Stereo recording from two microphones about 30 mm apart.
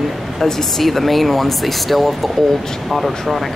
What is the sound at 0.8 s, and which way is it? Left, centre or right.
Speech, centre.